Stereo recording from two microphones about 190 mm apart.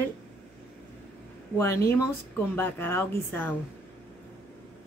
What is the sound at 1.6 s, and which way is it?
Speech, 15° left (ahead or behind).